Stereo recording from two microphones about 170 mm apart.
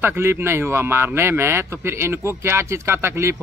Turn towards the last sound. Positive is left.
turn(degrees=-15)  # may be behind; listen again after turning